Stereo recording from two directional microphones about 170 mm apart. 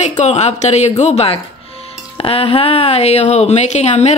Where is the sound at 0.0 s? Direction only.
40° left (ahead or behind).